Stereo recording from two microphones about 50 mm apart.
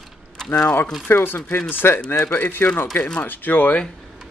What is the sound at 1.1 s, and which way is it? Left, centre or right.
Speech, left.